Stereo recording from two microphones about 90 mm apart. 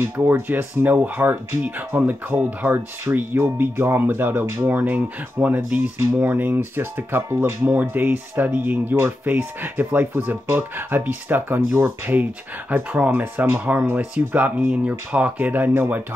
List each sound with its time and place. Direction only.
0.0 s speech: 25° right (ahead or behind)